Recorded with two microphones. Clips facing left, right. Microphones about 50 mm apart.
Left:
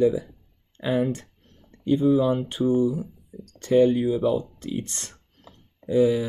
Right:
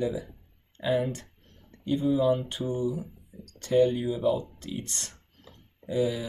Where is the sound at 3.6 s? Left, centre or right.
Left.